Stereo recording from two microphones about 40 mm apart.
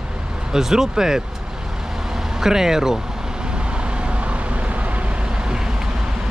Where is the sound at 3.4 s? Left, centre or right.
Right.